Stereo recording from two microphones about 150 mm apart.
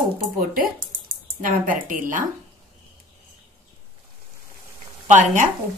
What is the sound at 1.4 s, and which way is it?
Speech, 65° right (ahead or behind).